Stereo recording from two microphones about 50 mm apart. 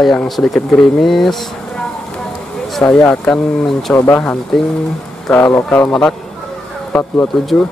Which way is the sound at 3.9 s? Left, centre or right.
Left.